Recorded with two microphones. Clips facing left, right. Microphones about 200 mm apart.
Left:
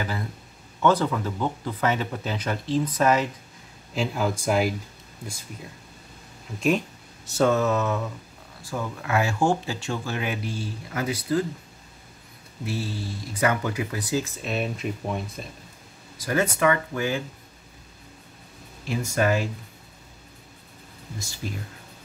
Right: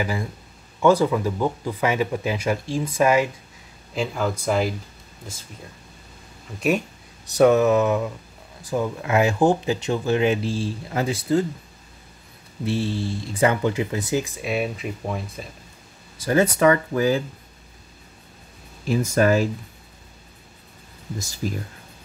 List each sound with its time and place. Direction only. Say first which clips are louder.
0.7 s speech: right 4 dB; 10° right (ahead or behind)
3.9 s speech: right 1 dB; centre (ahead or behind)
7.3 s speech: right 6 dB; 15° right (ahead or behind)
12.6 s speech: right 6 dB; 25° right (ahead or behind); by 15.4 s centre (ahead or behind)
16.2 s speech: right 5 dB; 30° right (ahead or behind)
18.9 s speech: right 5 dB; 40° right (ahead or behind)
21.4 s speech: right 6 dB; 45° right (ahead or behind)